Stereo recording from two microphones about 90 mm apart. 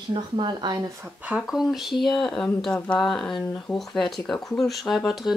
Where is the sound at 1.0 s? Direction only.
20° right (ahead or behind).